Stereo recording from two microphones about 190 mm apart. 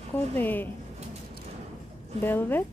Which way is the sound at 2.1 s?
10° left (ahead or behind).